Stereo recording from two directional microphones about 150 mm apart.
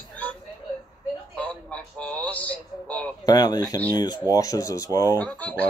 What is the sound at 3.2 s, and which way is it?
Speech, 25° left (ahead or behind).